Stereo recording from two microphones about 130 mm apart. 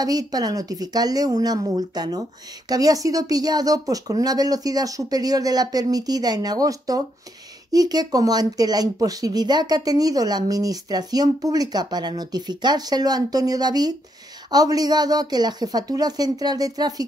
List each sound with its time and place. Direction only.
0.0 s speech: 30° right (ahead or behind)